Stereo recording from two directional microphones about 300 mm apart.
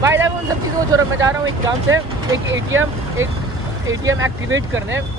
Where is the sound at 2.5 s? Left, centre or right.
Right.